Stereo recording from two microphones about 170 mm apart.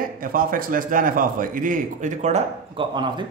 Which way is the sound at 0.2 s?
55° right (ahead or behind).